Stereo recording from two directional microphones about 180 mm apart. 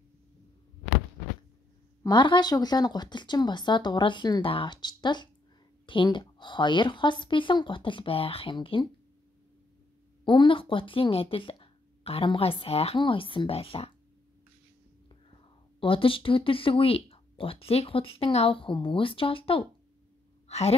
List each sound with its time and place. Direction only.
2.0 s speech: 25° left (ahead or behind)
10.2 s speech: 25° left (ahead or behind)
15.8 s a woman's voice: 30° left (ahead or behind)